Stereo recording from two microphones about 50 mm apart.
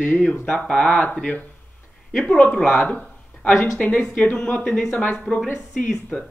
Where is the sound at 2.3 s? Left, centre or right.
Left.